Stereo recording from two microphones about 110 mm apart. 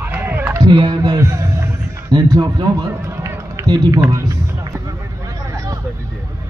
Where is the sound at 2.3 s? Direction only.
40° right (ahead or behind).